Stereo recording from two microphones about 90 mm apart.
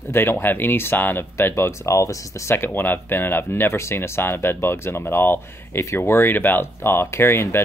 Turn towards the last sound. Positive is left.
turn(degrees=30)  # may be behind; listen again after turning